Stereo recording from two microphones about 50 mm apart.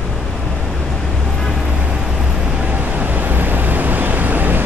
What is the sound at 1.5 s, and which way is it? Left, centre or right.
Vehicle, centre.